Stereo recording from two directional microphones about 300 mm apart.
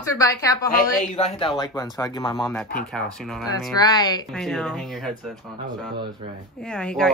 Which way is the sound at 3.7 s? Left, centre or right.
Centre.